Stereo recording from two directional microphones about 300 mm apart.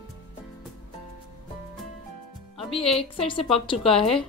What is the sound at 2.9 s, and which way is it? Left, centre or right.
A woman's voice, centre.